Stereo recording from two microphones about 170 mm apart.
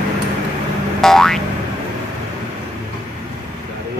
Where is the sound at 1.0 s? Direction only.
Centre (ahead or behind).